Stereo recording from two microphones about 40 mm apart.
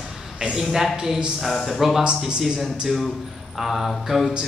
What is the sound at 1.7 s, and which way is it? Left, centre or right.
Mantra, centre.